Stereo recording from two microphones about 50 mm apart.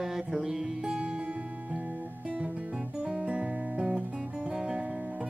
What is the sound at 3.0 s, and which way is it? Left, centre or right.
Music, centre.